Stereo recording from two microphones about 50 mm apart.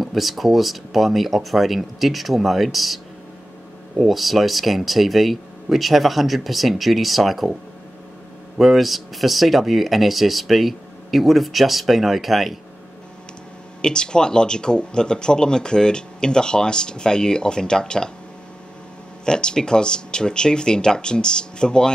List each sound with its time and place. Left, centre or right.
0.0 s speech: centre
4.0 s speech: centre
8.5 s speech: centre
13.7 s speech: centre
19.2 s speech: centre